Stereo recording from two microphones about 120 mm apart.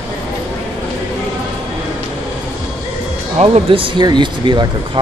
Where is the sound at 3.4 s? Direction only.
50° right (ahead or behind).